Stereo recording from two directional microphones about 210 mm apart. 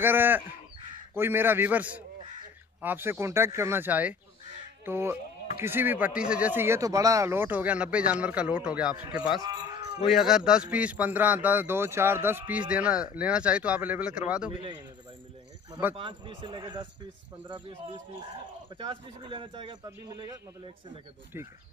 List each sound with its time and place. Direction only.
0.0 s a man's voice: 10° right (ahead or behind)
4.8 s a sound: 10° right (ahead or behind)
5.6 s a man's voice: 10° right (ahead or behind)
16.0 s speech: 25° right (ahead or behind)
18.8 s speech: 25° right (ahead or behind)